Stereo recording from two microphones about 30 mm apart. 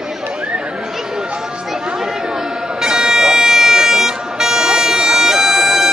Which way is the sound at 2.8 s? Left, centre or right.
Right.